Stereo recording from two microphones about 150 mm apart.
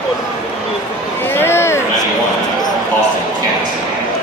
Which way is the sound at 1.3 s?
15° left (ahead or behind).